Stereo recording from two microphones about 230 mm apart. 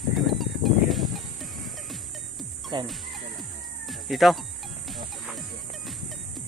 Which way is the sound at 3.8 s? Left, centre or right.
Centre.